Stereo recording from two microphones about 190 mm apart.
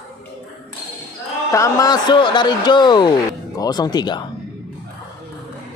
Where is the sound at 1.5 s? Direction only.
15° left (ahead or behind).